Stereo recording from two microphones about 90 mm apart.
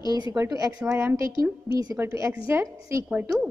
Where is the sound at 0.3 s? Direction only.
40° right (ahead or behind).